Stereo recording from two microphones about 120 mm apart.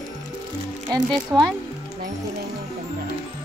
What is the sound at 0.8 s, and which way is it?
Speech, 35° right (ahead or behind).